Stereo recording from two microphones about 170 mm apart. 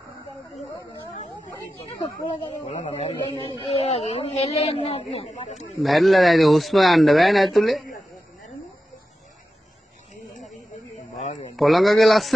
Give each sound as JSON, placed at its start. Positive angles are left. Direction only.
{"t": 2.7, "sound": "speech", "side_deg": 40}
{"t": 5.8, "sound": "a man's voice", "side_deg": 0}
{"t": 11.1, "sound": "a sound", "side_deg": 40}
{"t": 11.5, "sound": "a man's voice", "side_deg": 0}